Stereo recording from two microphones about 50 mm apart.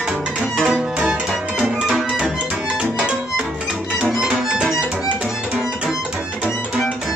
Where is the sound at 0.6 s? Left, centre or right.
Centre.